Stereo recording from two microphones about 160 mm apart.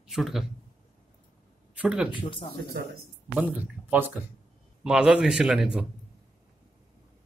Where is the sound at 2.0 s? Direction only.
30° left (ahead or behind).